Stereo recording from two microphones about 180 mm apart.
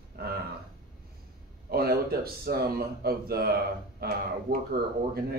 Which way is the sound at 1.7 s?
60° right (ahead or behind).